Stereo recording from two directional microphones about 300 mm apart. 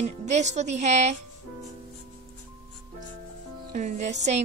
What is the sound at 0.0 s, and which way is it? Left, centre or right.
A woman's voice, right.